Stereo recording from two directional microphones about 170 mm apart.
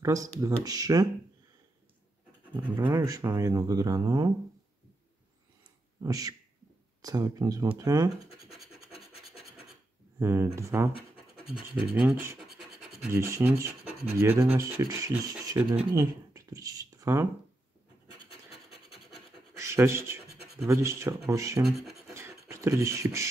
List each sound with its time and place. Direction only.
0.0 s speech: 20° right (ahead or behind)
2.5 s speech: 30° right (ahead or behind)
6.0 s speech: 20° right (ahead or behind)
10.1 s speech: 15° right (ahead or behind)
11.9 s speech: 10° right (ahead or behind)
15.9 s a sound: 20° right (ahead or behind)
19.5 s a sound: 15° right (ahead or behind)
20.6 s speech: 20° right (ahead or behind)
21.7 s scratch: centre (ahead or behind)
22.1 s beatboxing: 15° right (ahead or behind)